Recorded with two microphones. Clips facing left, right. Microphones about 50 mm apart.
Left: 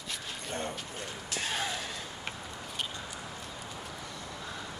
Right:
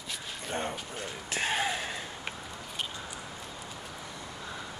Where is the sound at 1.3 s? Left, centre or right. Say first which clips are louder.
Right 4 dB; right.